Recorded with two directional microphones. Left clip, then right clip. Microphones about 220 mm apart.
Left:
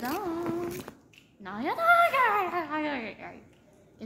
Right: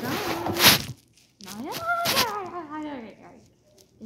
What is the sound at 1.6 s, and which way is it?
Dog, 20° left (ahead or behind).